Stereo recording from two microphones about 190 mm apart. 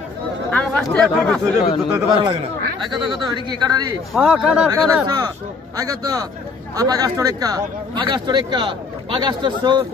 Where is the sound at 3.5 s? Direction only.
20° right (ahead or behind).